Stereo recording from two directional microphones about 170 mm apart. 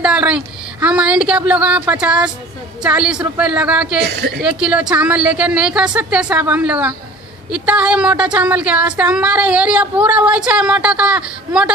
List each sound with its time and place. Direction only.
0.0 s speech: 5° right (ahead or behind)
4.0 s a woman's voice: 85° right
4.4 s speech: 5° right (ahead or behind)